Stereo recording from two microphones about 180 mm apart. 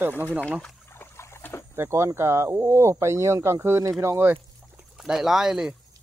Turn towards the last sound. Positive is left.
turn(degrees=-5)  # may be behind; listen again after turning